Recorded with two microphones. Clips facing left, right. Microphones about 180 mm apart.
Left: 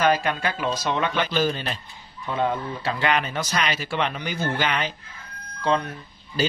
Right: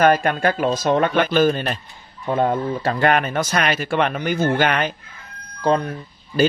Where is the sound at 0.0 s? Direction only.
50° right (ahead or behind).